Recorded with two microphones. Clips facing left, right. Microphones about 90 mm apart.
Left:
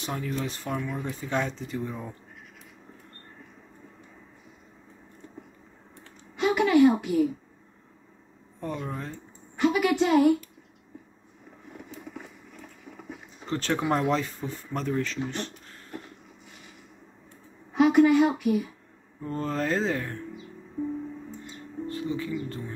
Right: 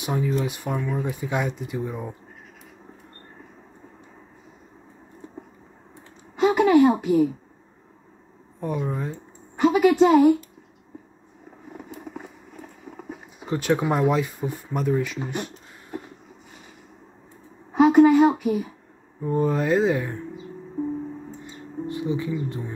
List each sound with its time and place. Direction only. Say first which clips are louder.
0.0 s speech: right 6 dB; 10° right (ahead or behind)
6.4 s a sound: right 3 dB; 50° right (ahead or behind)
8.5 s speech: right 6 dB; 10° right (ahead or behind)
9.6 s a woman's voice: right 6 dB; 45° right (ahead or behind)
13.4 s speech: right 5 dB; 10° right (ahead or behind)
15.2 s a sound: right 3 dB; 10° right (ahead or behind)
17.7 s speech: right 4 dB; 50° right (ahead or behind)
19.2 s speech: right 6 dB; 10° right (ahead or behind)
21.8 s music: right 4 dB; 15° right (ahead or behind)